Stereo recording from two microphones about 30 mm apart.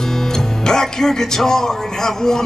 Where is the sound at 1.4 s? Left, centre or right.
Centre.